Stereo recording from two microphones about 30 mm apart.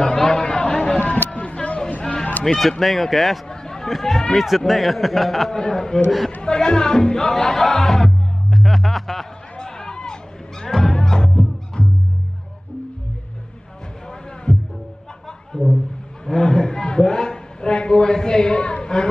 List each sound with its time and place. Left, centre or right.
0.0 s chatter: left
0.9 s a sound: left
2.5 s a man's voice: centre
3.4 s a sound: left
4.4 s a man's voice: centre
5.5 s speech: left
7.7 s music: centre
8.5 s music: centre
9.6 s run: left
10.6 s music: centre
14.5 s music: left
15.5 s a sound: left